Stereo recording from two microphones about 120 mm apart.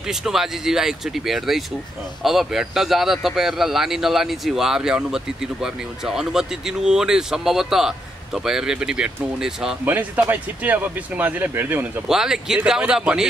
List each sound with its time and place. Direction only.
0.0 s a man's voice: 5° right (ahead or behind)
12.1 s a man's voice: 5° right (ahead or behind)